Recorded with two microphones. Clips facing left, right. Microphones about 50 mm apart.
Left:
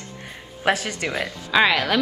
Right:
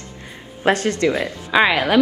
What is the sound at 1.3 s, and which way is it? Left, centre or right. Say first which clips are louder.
Speech: right 2 dB; centre.